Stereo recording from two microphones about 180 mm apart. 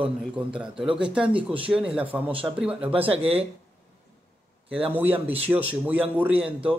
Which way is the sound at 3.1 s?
30° right (ahead or behind).